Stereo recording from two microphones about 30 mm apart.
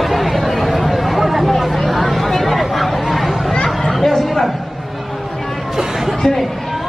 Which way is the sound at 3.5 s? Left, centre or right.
Left.